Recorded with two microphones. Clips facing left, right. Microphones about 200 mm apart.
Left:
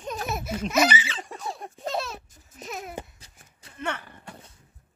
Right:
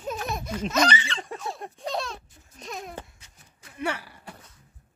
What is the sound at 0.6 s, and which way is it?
Laughter, 10° left (ahead or behind).